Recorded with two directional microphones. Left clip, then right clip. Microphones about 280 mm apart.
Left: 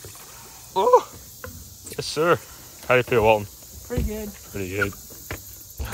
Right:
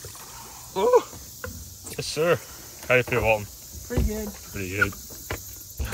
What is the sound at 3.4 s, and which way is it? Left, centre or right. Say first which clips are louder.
Cricket: left 5 dB; centre.